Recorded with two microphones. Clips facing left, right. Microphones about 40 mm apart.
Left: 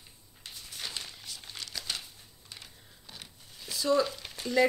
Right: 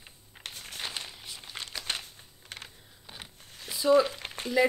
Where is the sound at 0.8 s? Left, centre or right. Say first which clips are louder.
Right 1 dB; right.